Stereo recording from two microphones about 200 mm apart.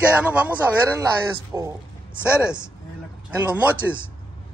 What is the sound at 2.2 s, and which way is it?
Speech, 5° right (ahead or behind).